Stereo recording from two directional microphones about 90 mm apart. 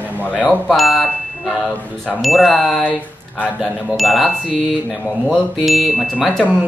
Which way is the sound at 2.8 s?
15° left (ahead or behind).